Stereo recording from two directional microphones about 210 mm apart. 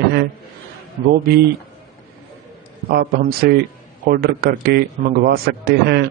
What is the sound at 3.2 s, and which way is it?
A man's voice, 45° right (ahead or behind).